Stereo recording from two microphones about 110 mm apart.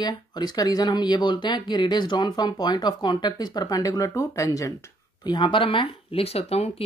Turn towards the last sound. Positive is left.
turn(degrees=65)  # may be behind; listen again after turning